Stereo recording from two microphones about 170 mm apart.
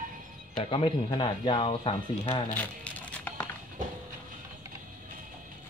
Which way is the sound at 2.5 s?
10° left (ahead or behind).